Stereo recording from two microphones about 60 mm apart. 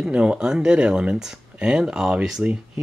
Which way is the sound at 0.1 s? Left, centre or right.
Centre.